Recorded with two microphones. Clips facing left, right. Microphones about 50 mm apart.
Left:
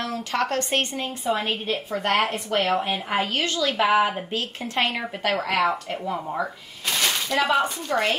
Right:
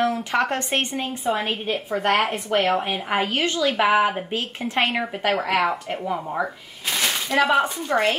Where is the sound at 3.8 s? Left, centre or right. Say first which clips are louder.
Even; centre.